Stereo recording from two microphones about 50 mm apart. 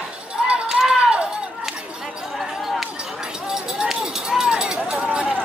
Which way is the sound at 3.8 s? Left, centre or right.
Centre.